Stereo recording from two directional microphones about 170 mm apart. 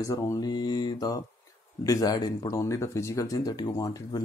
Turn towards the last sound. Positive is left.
turn(degrees=25)  # may be behind; listen again after turning